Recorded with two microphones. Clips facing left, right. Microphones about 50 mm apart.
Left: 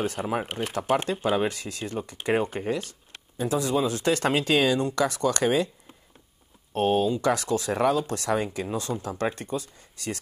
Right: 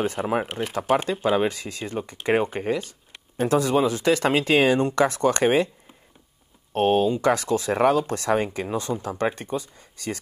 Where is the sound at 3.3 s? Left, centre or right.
Right.